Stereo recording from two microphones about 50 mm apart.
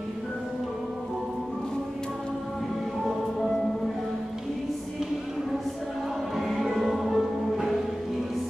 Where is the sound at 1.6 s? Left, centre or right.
Centre.